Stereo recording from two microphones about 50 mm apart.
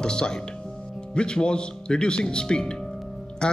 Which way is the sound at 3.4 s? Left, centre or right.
Centre.